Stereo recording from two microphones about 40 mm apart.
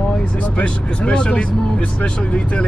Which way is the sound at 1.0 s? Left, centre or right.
Left.